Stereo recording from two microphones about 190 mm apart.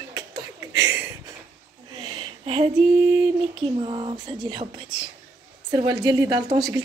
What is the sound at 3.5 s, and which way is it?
A woman's voice, 25° right (ahead or behind).